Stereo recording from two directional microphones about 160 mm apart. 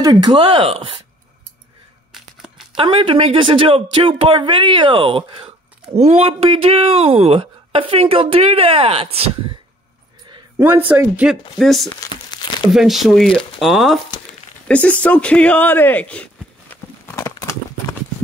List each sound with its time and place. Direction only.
0.0 s speech: 25° right (ahead or behind)
2.1 s tearing: centre (ahead or behind)
2.7 s speech: 35° right (ahead or behind)
10.9 s speech: 10° right (ahead or behind)
12.0 s crumpling: 25° left (ahead or behind)
12.6 s speech: centre (ahead or behind)
17.0 s horse: 15° left (ahead or behind)